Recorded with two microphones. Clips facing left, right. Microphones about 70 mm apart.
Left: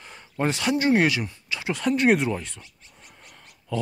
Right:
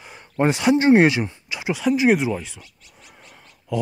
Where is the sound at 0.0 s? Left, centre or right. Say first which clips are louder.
Right 6 dB; centre.